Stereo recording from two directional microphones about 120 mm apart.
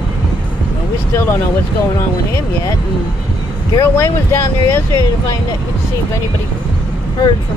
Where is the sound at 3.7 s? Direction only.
25° left (ahead or behind).